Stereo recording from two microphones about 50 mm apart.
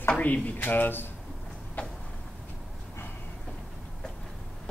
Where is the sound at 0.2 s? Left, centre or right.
Left.